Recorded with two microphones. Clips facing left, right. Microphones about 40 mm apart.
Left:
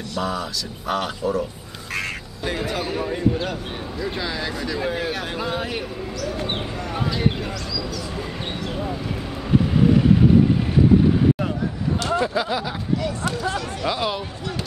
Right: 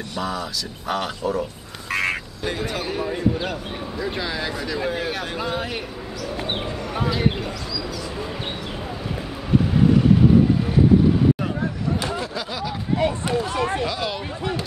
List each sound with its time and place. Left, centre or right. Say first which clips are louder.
0.2 s speech: left 1 dB; centre
1.9 s vehicle: right 5 dB; centre
2.5 s speech: left 2 dB; centre
12.2 s speech: left 5 dB; centre
12.9 s speech: right 4 dB; right
13.8 s speech: left 3 dB; centre